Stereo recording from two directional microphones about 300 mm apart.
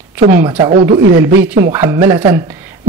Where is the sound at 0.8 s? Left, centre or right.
Right.